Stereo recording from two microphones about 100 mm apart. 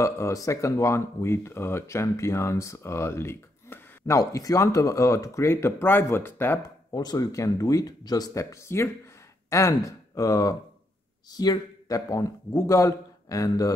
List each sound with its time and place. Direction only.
0.0 s speech: 30° left (ahead or behind)
6.6 s a man's voice: 45° left (ahead or behind)